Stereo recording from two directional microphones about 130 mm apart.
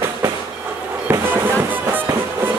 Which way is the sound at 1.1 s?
15° right (ahead or behind).